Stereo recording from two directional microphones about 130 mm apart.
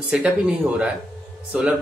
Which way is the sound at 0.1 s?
5° right (ahead or behind).